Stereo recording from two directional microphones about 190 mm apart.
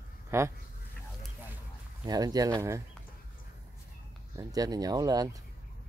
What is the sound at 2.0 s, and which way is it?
Speech, 20° right (ahead or behind).